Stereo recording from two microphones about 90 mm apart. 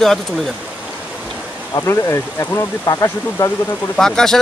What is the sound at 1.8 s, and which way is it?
Speech, 35° left (ahead or behind).